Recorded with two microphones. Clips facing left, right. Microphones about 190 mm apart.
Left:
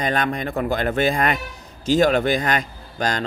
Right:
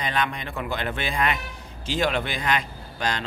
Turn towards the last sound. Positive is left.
turn(degrees=40)  # may be behind; listen again after turning